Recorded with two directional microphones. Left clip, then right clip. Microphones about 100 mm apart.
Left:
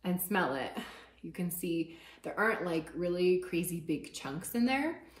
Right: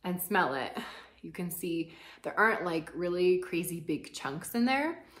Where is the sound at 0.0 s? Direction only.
20° right (ahead or behind); by 4.8 s 40° right (ahead or behind).